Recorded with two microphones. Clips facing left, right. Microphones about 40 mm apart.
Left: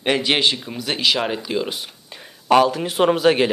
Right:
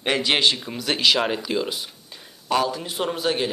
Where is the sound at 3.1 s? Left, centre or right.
Left.